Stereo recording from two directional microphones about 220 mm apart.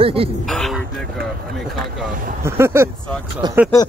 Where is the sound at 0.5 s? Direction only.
Centre (ahead or behind).